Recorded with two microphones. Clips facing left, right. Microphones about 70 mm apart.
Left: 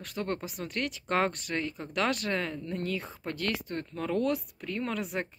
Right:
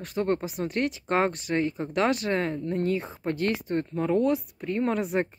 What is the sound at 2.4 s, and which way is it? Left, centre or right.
Speech, right.